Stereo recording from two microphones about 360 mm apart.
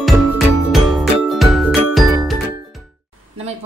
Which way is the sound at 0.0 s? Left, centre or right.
Centre.